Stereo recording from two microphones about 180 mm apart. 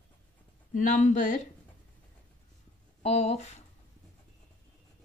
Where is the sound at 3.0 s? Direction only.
35° left (ahead or behind).